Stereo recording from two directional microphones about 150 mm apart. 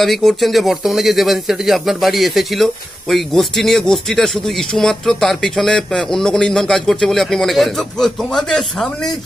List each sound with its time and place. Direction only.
0.0 s speech: centre (ahead or behind)